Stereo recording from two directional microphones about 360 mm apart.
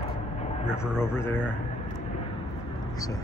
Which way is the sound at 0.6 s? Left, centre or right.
Centre.